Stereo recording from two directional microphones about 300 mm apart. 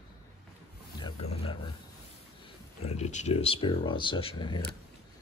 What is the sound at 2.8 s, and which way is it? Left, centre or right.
Speech, left.